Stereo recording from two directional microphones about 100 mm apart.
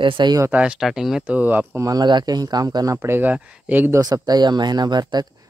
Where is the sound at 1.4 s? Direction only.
20° right (ahead or behind).